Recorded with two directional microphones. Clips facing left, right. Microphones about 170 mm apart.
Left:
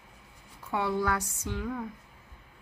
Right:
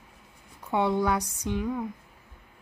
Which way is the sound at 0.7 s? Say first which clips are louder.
Right 4 dB; 20° right (ahead or behind).